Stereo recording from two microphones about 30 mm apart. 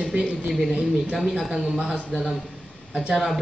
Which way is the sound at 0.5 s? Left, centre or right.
Centre.